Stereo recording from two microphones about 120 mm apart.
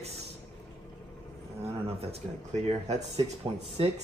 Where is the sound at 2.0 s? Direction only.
60° right (ahead or behind).